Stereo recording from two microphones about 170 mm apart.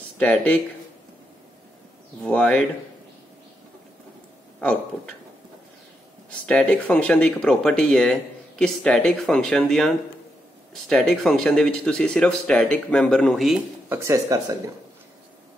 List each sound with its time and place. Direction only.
0.2 s speech: 10° left (ahead or behind)
2.2 s speech: 5° left (ahead or behind)
4.6 s speech: 5° left (ahead or behind)
6.4 s speech: 5° left (ahead or behind)
11.1 s speech: 5° left (ahead or behind)
13.8 s speech: 15° right (ahead or behind)